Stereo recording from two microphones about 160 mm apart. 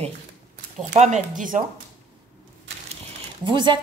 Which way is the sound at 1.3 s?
55° right (ahead or behind).